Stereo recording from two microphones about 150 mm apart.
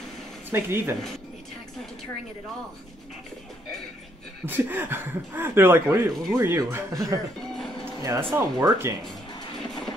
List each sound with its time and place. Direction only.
0.5 s speech: 15° right (ahead or behind)
4.5 s speech: 15° right (ahead or behind)